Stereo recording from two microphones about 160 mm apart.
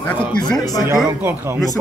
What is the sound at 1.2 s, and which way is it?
Speech, 15° right (ahead or behind).